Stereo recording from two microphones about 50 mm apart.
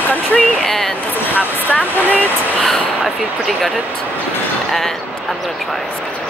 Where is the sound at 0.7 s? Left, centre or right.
Centre.